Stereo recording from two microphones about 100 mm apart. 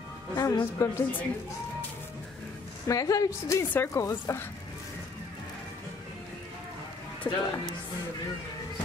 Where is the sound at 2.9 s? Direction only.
35° left (ahead or behind).